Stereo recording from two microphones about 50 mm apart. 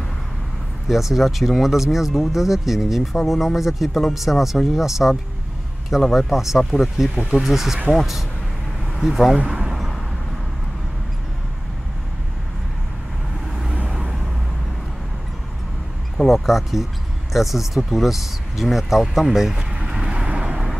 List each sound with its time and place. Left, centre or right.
0.8 s speech: centre
6.6 s speech: centre
7.2 s speech: centre
9.4 s speech: right
9.7 s a sound: centre
13.8 s vehicle: centre
16.3 s speech: centre
19.9 s vehicle: centre
20.2 s vehicle: right